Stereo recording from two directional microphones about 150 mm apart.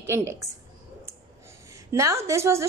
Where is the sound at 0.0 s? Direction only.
15° right (ahead or behind).